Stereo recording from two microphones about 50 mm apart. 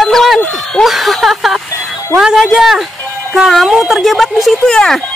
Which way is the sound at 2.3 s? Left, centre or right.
Centre.